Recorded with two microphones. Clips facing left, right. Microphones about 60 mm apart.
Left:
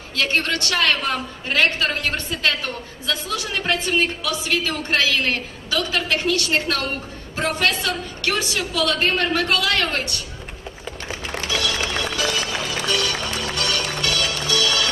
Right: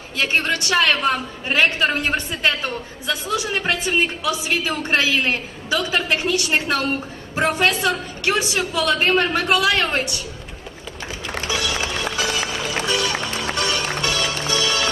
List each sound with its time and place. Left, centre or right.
0.1 s a woman's voice: right
11.4 s music: centre